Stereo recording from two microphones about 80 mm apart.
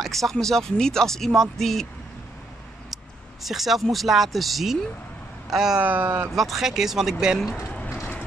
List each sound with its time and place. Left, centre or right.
0.0 s speech: centre
3.4 s speech: centre
5.8 s speech: right
6.3 s speech: centre
7.7 s a sound: centre